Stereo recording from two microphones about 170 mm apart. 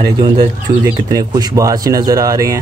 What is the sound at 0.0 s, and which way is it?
Speech, 25° right (ahead or behind).